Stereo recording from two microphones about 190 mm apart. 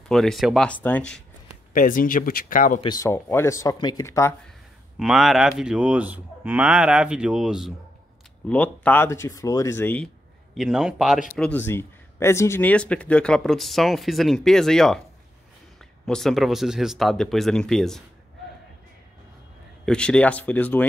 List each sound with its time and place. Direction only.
0.1 s a man's voice: centre (ahead or behind)
1.7 s speech: 45° left (ahead or behind)
2.8 s speech: 20° left (ahead or behind)
4.9 s a man's voice: centre (ahead or behind)
8.5 s speech: 10° left (ahead or behind)
10.5 s a man's voice: 5° right (ahead or behind)
19.9 s speech: 5° left (ahead or behind)